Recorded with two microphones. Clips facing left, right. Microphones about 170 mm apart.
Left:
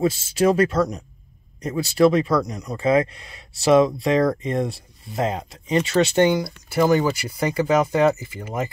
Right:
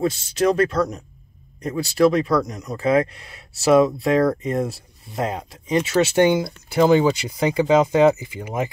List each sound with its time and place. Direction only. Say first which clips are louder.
0.0 s speech: left 1 dB; 5° left (ahead or behind)
6.3 s speech: right 2 dB; 20° right (ahead or behind)